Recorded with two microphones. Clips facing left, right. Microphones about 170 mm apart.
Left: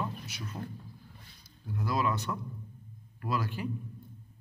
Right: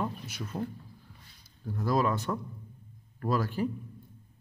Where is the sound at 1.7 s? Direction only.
40° right (ahead or behind).